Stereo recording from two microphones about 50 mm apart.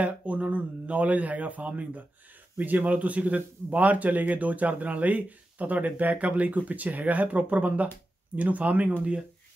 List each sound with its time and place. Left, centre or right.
0.0 s a man's voice: right